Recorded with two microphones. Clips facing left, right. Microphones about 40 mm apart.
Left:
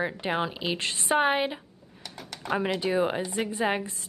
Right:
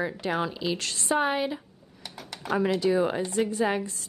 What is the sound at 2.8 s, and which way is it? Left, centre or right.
A woman's voice, left.